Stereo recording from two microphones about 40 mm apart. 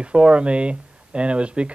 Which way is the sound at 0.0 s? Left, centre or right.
Right.